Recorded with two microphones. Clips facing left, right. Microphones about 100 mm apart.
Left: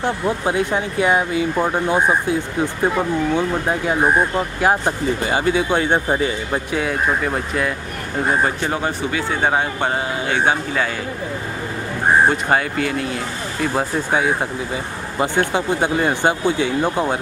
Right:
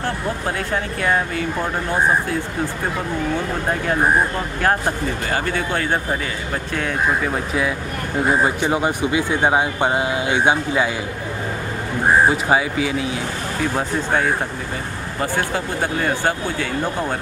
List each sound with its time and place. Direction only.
0.0 s speech: 20° left (ahead or behind)
3.8 s speech: 10° left (ahead or behind)
6.7 s speech: 5° left (ahead or behind); by 10.9 s 15° right (ahead or behind)
12.3 s speech: 5° right (ahead or behind)
15.1 s speech: 20° left (ahead or behind)